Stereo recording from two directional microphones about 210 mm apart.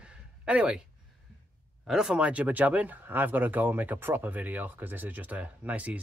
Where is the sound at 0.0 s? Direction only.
5° right (ahead or behind).